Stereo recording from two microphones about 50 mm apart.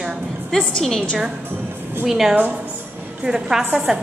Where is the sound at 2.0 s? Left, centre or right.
Centre.